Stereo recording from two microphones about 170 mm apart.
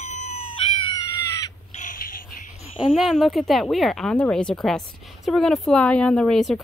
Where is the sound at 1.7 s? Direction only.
50° left (ahead or behind).